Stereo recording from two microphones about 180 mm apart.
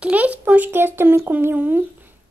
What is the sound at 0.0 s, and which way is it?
A child's voice, 10° right (ahead or behind).